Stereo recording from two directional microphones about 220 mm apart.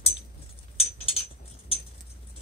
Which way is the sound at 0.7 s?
25° left (ahead or behind).